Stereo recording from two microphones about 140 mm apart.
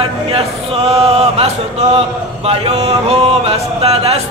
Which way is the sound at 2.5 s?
50° right (ahead or behind).